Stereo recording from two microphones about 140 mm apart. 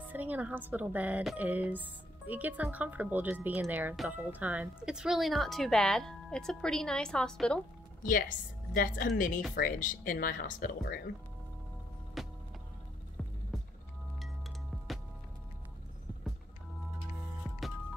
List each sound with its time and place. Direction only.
0.1 s speech: 10° right (ahead or behind); by 7.6 s 5° left (ahead or behind)
8.0 s a woman's voice: 85° left
12.2 s music: centre (ahead or behind)